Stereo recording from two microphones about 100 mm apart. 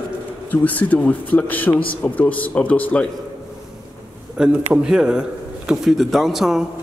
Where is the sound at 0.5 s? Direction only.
15° left (ahead or behind).